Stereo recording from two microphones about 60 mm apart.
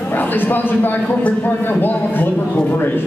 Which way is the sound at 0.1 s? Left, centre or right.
Left.